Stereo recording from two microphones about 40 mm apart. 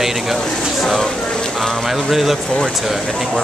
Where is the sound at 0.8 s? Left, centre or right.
Centre.